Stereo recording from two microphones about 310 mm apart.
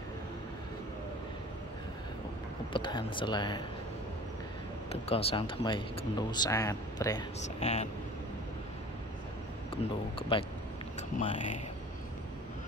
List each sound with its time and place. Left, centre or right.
2.7 s speech: centre
5.0 s speech: centre
11.0 s speech: left